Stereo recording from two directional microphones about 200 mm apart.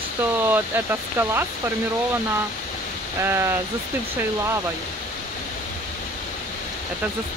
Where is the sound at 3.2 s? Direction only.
10° right (ahead or behind).